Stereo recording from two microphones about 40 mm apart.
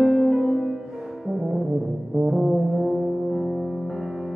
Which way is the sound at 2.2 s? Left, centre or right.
Centre.